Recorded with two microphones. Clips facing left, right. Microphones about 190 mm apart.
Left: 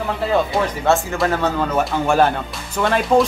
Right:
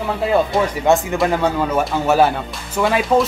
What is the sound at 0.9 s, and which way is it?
Speech, 15° right (ahead or behind).